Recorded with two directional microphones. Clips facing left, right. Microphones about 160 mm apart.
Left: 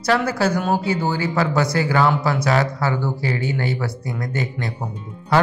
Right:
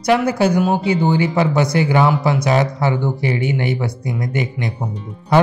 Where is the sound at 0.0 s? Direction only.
15° right (ahead or behind).